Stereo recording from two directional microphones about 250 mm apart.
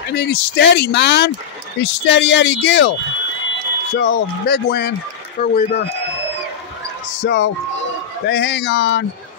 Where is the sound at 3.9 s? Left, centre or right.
Left.